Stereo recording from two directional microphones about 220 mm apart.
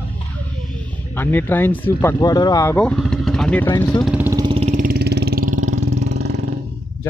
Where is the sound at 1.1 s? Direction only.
10° left (ahead or behind).